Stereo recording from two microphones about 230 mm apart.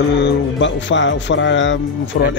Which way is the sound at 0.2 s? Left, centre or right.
Left.